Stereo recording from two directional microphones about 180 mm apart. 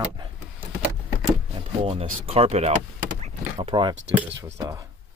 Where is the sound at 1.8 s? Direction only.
30° right (ahead or behind).